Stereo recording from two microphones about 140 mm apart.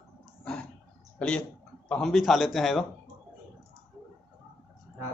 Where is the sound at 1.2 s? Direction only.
5° left (ahead or behind).